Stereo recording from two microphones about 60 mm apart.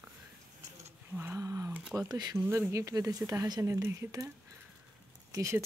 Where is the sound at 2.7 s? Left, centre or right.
Right.